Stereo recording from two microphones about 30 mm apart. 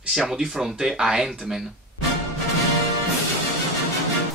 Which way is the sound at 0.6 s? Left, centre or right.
Centre.